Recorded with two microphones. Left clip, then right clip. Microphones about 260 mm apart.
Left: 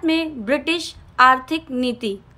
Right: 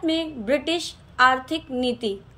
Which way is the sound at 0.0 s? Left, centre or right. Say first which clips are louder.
Left 4 dB; centre.